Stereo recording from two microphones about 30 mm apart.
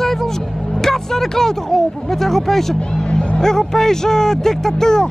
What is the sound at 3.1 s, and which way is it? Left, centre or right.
Speech, left.